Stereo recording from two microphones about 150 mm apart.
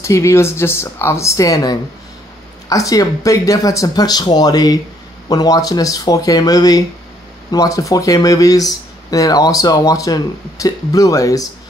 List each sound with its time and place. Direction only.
0.0 s speech: 20° left (ahead or behind)